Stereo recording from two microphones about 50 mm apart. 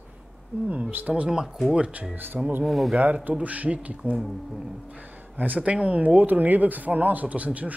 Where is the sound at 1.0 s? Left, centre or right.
Right.